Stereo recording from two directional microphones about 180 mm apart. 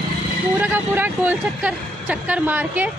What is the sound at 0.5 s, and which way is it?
Speech, 10° right (ahead or behind).